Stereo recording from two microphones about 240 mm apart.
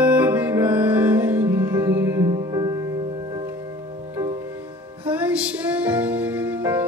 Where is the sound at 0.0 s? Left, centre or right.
Centre.